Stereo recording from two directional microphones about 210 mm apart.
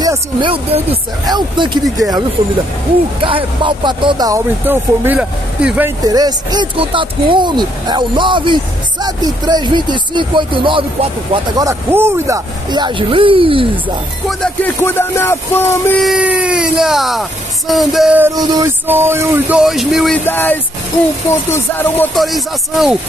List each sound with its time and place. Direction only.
0.0 s speech: 20° right (ahead or behind)
3.3 s speech: 25° right (ahead or behind); by 5.9 s 5° right (ahead or behind)
6.0 s speech: 20° right (ahead or behind)
14.4 s speech: 10° left (ahead or behind)
16.0 s speech: 5° right (ahead or behind)
20.2 s speech: 10° left (ahead or behind)